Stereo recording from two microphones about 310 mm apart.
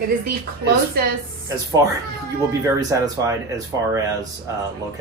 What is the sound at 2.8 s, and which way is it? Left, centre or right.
A woman's voice, centre.